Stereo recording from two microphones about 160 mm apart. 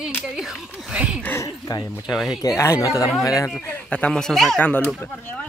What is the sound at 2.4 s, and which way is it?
A woman's voice, 20° left (ahead or behind).